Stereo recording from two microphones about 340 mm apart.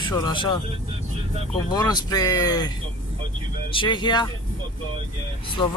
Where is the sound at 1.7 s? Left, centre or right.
Centre.